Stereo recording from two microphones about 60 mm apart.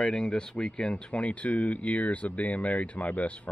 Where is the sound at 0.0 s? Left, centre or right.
Centre.